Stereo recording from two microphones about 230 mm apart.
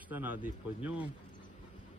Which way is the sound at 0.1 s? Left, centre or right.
Centre.